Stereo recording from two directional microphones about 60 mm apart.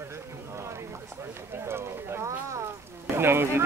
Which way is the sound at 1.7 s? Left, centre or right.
Right.